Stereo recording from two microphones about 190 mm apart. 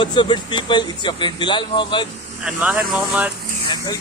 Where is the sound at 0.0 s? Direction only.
25° left (ahead or behind).